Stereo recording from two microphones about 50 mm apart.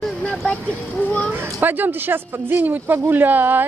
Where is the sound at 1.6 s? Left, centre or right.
Right.